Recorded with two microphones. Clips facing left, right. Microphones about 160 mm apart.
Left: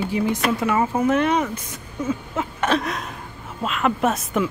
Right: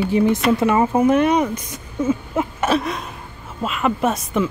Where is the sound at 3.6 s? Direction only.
Centre (ahead or behind).